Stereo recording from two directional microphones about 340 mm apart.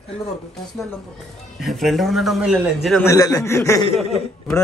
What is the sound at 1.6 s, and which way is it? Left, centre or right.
A man's voice, centre.